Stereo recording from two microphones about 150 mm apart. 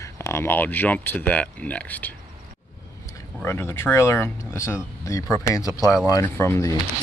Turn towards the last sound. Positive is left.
turn(degrees=15)  # may be behind; listen again after turning